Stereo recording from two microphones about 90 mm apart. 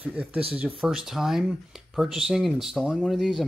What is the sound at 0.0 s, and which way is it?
Speech, 15° right (ahead or behind).